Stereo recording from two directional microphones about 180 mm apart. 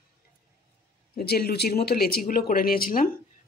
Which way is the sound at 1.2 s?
60° left (ahead or behind).